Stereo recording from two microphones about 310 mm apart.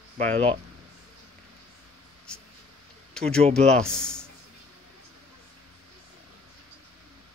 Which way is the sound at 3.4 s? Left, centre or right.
Centre.